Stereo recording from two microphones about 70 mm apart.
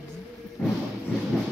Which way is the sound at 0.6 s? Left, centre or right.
Centre.